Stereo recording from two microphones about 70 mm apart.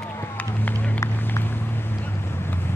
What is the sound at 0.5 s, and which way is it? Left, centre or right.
Run, left.